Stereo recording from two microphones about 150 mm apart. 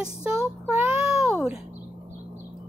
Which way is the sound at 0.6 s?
15° right (ahead or behind).